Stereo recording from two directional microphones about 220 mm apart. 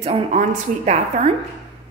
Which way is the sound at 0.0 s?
30° right (ahead or behind).